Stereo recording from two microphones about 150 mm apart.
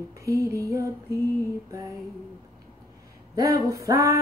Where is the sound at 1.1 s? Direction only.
20° left (ahead or behind).